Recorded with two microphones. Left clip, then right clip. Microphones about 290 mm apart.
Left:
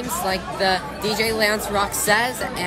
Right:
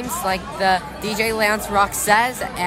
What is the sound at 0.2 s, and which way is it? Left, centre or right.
Speech, centre.